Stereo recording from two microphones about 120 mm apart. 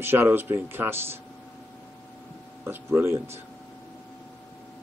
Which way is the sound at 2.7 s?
20° right (ahead or behind).